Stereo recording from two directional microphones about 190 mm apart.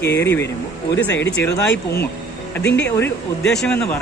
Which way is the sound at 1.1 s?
70° left (ahead or behind).